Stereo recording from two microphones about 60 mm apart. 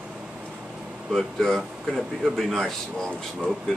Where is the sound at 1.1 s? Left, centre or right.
Centre.